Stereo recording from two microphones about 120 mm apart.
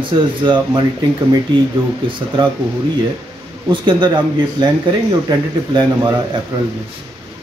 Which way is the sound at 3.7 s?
40° right (ahead or behind).